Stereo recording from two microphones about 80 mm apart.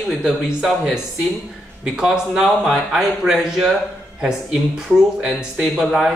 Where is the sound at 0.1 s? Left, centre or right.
Centre.